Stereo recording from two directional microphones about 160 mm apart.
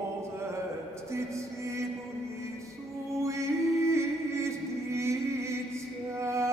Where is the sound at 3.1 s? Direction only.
20° right (ahead or behind).